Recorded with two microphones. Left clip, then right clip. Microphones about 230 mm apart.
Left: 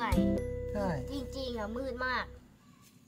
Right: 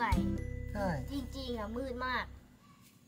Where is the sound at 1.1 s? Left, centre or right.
Left.